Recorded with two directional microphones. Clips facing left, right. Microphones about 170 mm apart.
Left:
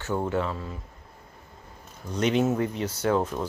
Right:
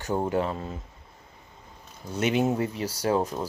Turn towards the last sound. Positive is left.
turn(degrees=-15)  # may be behind; listen again after turning